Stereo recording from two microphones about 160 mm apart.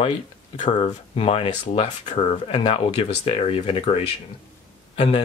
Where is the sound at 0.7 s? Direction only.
35° left (ahead or behind).